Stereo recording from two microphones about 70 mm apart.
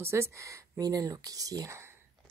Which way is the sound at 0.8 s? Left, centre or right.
Right.